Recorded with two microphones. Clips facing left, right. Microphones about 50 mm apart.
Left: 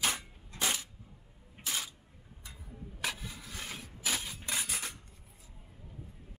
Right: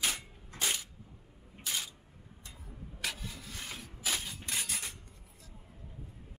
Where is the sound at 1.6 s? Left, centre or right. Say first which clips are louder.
Even; centre.